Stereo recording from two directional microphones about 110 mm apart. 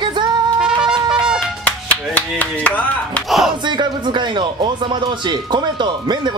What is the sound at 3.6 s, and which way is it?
Speech, 45° right (ahead or behind).